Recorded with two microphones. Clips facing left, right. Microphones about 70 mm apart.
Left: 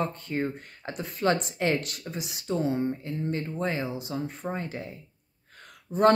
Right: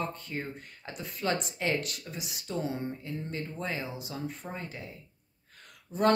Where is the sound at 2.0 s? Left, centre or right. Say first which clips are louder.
Left 5 dB; left.